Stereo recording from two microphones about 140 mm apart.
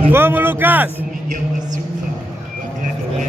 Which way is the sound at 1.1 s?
75° right (ahead or behind).